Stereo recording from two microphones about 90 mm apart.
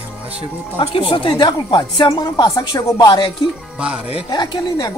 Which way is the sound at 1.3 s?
50° left (ahead or behind).